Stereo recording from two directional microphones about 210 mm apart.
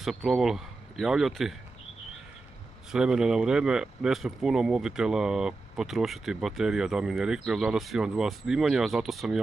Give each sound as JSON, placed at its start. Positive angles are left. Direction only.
{"t": 0.0, "sound": "speech", "side_deg": 0}
{"t": 2.9, "sound": "speech", "side_deg": -5}